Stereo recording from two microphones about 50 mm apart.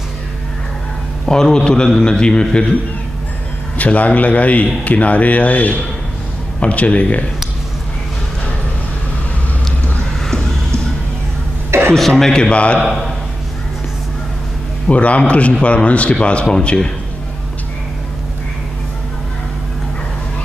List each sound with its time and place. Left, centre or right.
1.2 s a man's voice: centre
3.7 s a man's voice: left
11.7 s a sound: right
12.1 s a man's voice: centre
14.9 s a man's voice: left